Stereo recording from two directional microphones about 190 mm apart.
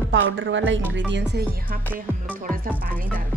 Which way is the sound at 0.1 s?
75° right (ahead or behind).